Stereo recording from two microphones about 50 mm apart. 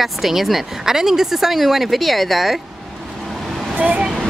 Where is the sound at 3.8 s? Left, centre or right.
Right.